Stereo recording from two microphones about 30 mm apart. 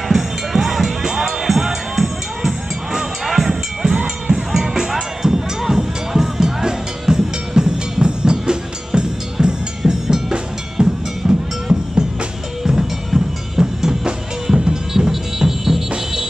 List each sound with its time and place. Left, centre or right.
0.1 s music: centre
3.9 s cowbell: right
4.5 s music: centre
15.0 s music: centre